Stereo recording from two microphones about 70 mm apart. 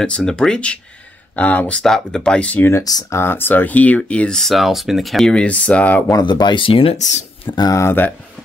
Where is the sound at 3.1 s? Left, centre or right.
Left.